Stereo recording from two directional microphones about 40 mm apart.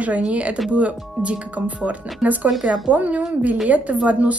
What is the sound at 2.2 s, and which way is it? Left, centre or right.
Speech, right.